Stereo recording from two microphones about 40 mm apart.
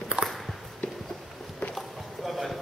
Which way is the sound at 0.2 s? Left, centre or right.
Right.